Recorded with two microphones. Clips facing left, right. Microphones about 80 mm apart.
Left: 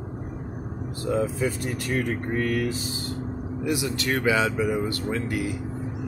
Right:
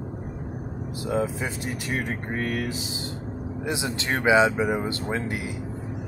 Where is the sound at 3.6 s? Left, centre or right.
Right.